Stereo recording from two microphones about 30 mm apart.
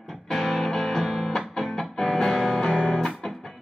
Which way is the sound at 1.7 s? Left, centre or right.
Left.